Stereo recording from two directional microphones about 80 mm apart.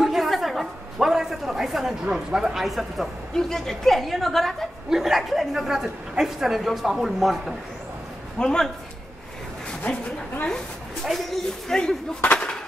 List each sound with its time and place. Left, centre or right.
0.0 s a woman's voice: centre
8.4 s a man's voice: centre
11.1 s speech: centre
12.2 s a sound: centre